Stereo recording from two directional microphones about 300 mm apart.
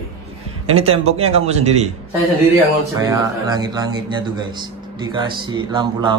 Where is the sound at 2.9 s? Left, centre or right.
Centre.